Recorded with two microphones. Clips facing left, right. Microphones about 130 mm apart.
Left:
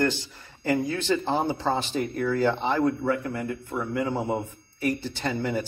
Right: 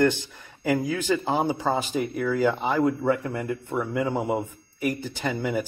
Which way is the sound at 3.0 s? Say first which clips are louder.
Right 2 dB; 25° right (ahead or behind).